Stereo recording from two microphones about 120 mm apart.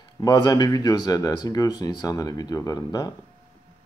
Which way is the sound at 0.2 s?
35° left (ahead or behind).